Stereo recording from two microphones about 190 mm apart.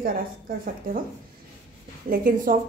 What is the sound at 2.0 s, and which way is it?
Speech, 50° right (ahead or behind).